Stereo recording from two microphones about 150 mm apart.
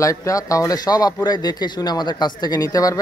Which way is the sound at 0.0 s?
20° left (ahead or behind).